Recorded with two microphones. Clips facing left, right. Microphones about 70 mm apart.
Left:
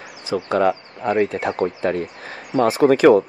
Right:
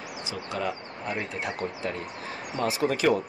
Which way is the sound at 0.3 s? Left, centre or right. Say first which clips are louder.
Left 14 dB; left.